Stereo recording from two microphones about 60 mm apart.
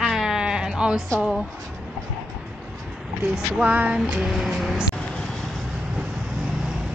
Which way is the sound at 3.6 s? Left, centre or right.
Right.